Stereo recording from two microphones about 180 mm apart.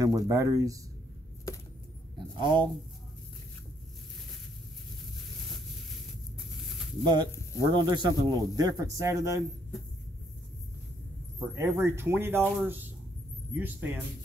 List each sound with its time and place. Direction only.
0.0 s speech: 20° right (ahead or behind)
2.4 s speech: 25° right (ahead or behind)
7.1 s speech: 25° right (ahead or behind)
11.3 s speech: 15° right (ahead or behind)